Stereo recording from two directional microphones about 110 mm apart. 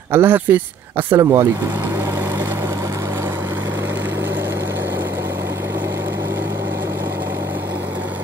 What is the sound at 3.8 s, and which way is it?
Vehicle, 20° right (ahead or behind).